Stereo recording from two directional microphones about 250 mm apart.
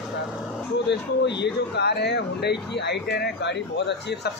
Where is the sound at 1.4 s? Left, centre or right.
Left.